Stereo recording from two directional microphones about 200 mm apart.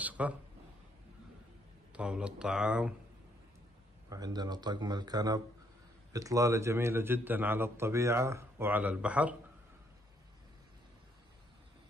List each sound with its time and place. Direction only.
0.0 s a sound: 10° right (ahead or behind)
1.9 s speech: 5° right (ahead or behind)
4.1 s a man's voice: 20° right (ahead or behind)